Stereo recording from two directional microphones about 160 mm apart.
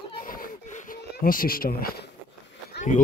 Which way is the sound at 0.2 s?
60° left (ahead or behind).